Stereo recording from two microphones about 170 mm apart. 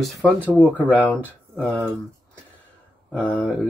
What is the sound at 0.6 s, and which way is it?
Speech, 10° left (ahead or behind).